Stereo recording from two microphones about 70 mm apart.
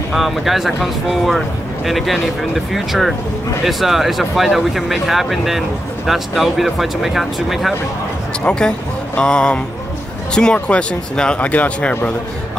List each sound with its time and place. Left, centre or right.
0.1 s speech: centre
8.5 s speech: centre